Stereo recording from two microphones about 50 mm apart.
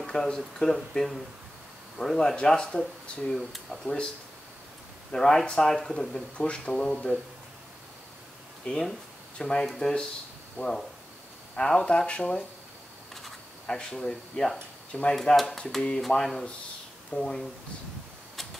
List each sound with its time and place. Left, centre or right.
0.0 s speech: centre
3.8 s speech: centre
5.1 s speech: centre
6.3 s speech: left
8.6 s speech: left
9.4 s speech: centre
13.7 s speech: centre
15.4 s speech: centre